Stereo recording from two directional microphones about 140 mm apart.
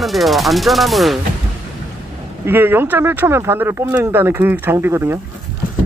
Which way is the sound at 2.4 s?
15° right (ahead or behind).